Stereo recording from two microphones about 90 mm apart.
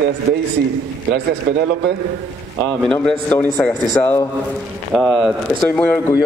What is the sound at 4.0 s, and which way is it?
Speech, 30° left (ahead or behind).